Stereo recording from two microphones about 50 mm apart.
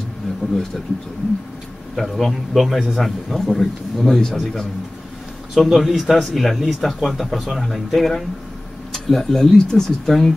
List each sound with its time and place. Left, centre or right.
0.4 s speech: left
2.0 s a man's voice: centre
5.5 s a man's voice: centre